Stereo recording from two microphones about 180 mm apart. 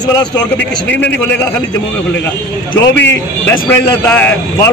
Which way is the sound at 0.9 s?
10° left (ahead or behind).